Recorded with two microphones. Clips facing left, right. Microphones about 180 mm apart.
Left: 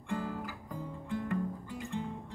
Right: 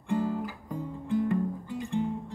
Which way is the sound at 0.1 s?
20° right (ahead or behind).